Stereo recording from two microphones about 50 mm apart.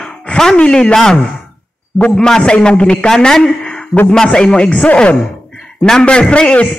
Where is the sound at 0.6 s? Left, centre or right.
Centre.